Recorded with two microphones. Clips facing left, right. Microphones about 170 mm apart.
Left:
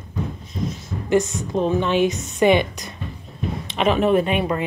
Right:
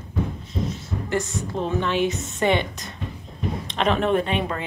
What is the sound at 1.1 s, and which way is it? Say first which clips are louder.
Speech: left 7 dB; 20° left (ahead or behind).